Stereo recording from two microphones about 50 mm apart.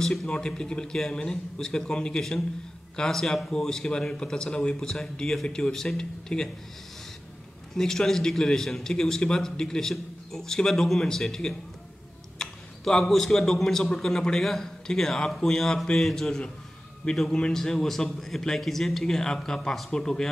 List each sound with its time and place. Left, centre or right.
0.0 s a man's voice: centre
7.7 s a man's voice: centre